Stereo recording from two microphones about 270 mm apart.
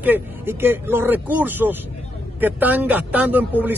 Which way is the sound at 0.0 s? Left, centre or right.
Centre.